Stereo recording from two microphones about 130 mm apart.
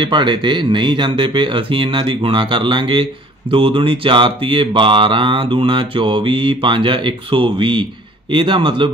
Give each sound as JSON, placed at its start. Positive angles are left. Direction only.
{"t": 0.0, "sound": "mantra", "side_deg": -35}